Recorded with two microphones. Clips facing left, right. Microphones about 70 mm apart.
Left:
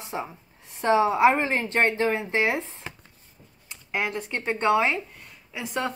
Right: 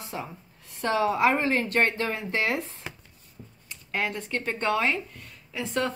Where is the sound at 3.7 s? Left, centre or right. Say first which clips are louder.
Left 1 dB; centre.